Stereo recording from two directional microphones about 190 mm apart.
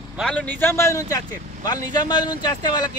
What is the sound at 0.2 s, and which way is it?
Speech, 5° left (ahead or behind).